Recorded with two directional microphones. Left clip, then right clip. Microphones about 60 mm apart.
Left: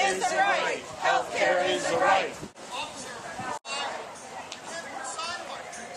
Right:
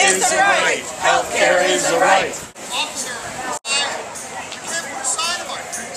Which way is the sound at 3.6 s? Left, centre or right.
Centre.